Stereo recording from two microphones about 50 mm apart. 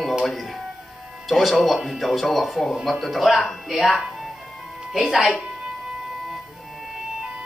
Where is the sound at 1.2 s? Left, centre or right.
Centre.